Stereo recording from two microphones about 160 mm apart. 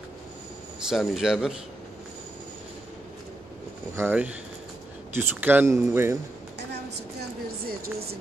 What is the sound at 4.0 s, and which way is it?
Speech, 10° right (ahead or behind).